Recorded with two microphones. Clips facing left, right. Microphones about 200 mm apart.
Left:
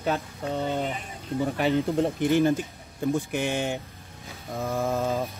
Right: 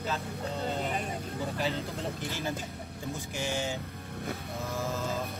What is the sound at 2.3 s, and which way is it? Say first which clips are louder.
Speech: left 13 dB; 55° left (ahead or behind).